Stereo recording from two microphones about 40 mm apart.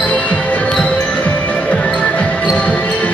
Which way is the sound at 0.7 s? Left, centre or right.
Left.